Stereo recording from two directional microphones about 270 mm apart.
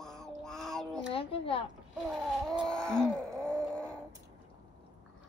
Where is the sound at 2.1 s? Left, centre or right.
Centre.